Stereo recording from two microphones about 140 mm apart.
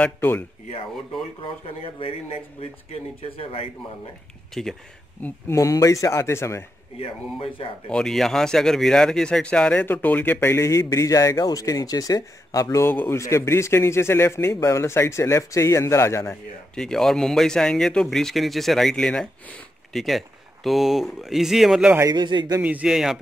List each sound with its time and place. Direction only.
0.0 s speech: 15° left (ahead or behind)
2.0 s a man's voice: 40° left (ahead or behind)
4.6 s speech: 5° left (ahead or behind)
5.2 s speech: 20° left (ahead or behind)
7.9 s speech: 5° left (ahead or behind); by 16.3 s 20° left (ahead or behind)
16.7 s speech: 5° left (ahead or behind)
22.1 s a man's voice: 35° right (ahead or behind)
22.6 s speech: 10° right (ahead or behind)